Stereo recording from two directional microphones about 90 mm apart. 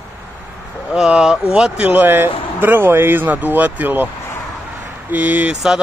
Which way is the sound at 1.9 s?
20° right (ahead or behind).